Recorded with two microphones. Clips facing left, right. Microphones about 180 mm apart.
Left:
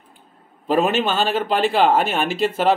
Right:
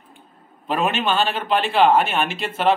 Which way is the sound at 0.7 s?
40° left (ahead or behind).